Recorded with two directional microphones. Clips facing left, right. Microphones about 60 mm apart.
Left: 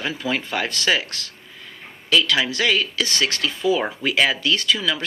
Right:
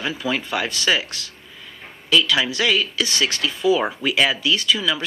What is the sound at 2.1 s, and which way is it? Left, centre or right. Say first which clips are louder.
Speech: right 1 dB; left.